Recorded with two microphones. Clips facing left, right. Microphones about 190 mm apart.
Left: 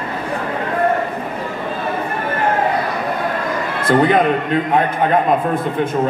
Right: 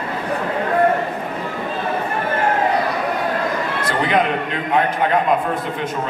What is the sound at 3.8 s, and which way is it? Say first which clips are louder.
Speech: left 6 dB; 50° left (ahead or behind).